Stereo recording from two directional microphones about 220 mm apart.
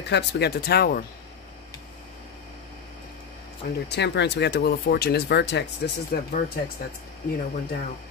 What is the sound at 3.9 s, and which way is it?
Speech, 50° left (ahead or behind).